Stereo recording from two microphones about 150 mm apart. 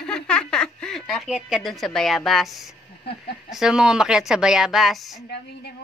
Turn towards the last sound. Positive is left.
turn(degrees=90)